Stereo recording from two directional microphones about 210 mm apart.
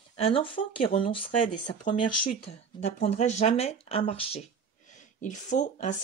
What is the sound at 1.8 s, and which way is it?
Speech, 35° left (ahead or behind).